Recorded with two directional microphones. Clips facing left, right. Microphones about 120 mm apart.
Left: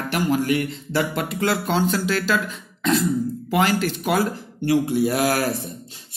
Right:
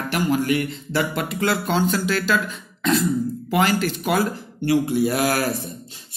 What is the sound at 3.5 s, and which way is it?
Speech, 20° left (ahead or behind).